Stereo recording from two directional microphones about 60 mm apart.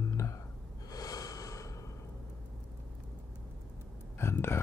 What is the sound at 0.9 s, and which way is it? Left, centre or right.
Snort, left.